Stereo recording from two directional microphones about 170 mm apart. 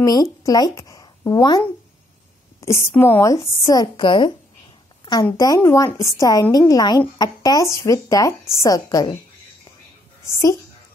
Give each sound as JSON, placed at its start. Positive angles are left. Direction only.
{"t": 0.0, "sound": "a woman's voice", "side_deg": 20}
{"t": 2.6, "sound": "speech", "side_deg": 15}
{"t": 5.4, "sound": "speech", "side_deg": 20}
{"t": 10.2, "sound": "speech", "side_deg": 20}